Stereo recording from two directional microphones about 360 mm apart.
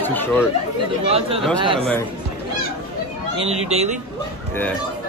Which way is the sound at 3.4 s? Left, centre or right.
Centre.